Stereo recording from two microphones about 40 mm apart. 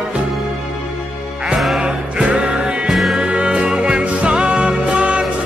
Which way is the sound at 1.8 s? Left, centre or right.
Right.